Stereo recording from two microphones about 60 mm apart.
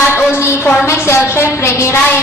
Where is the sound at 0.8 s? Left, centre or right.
Left.